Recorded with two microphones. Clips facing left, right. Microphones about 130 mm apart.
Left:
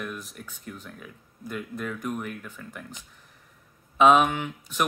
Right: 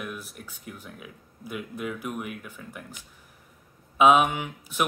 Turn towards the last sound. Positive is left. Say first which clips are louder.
# left 1 dB
turn(degrees=-10)  # may be behind; listen again after turning